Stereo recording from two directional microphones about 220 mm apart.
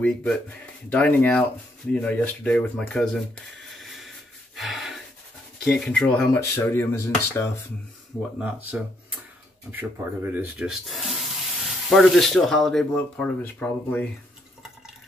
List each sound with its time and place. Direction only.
0.0 s speech: 5° left (ahead or behind)
4.6 s gasp: centre (ahead or behind)
5.6 s speech: centre (ahead or behind)
8.4 s speech: 5° right (ahead or behind)